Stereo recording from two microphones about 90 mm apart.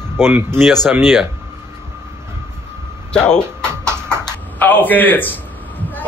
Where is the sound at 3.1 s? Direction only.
10° left (ahead or behind).